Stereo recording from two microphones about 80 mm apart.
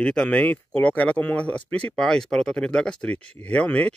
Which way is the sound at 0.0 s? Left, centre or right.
Centre.